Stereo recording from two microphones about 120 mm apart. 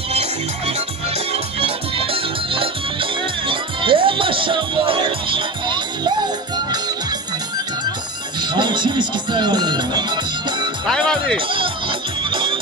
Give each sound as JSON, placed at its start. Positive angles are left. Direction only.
{"t": 0.1, "sound": "music", "side_deg": -60}
{"t": 8.4, "sound": "music", "side_deg": -40}
{"t": 10.9, "sound": "speech", "side_deg": 5}
{"t": 11.3, "sound": "speech", "side_deg": -45}
{"t": 12.2, "sound": "music", "side_deg": -45}